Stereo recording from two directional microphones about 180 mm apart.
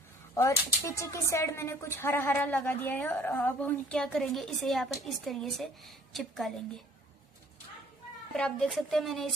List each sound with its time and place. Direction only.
0.3 s a woman's voice: 15° left (ahead or behind)
8.3 s a woman's voice: 5° left (ahead or behind)